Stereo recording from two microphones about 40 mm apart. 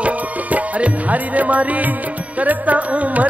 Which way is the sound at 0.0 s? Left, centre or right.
Right.